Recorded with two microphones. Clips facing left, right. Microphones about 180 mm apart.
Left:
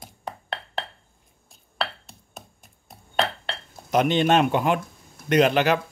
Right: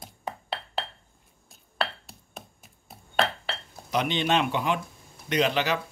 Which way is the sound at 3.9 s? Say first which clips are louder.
Left 6 dB; 50° left (ahead or behind).